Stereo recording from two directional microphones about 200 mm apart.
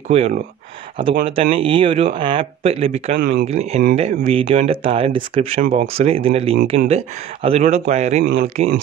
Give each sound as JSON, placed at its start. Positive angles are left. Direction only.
{"t": 0.1, "sound": "a man's voice", "side_deg": -30}
{"t": 3.2, "sound": "speech", "side_deg": -45}
{"t": 3.4, "sound": "a man's voice", "side_deg": -30}